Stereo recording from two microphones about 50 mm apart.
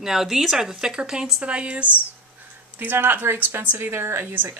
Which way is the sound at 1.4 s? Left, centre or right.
Right.